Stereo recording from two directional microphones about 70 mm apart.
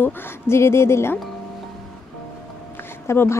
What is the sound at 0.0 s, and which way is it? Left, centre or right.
Speech, left.